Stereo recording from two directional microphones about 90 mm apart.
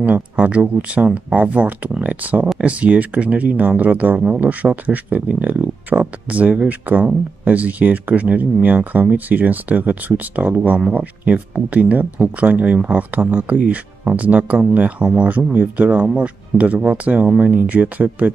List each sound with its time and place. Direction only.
0.0 s speech: 15° right (ahead or behind)